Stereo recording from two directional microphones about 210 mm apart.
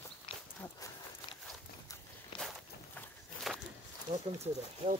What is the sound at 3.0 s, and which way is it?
Walk, 5° left (ahead or behind).